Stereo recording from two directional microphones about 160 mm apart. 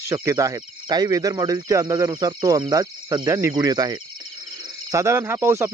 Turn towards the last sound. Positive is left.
turn(degrees=-15)  # may be behind; listen again after turning